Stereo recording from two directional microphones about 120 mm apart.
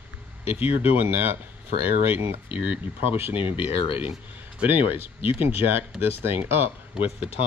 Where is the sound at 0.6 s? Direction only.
15° right (ahead or behind).